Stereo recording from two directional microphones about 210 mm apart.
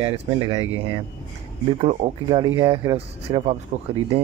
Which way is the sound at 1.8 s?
25° right (ahead or behind).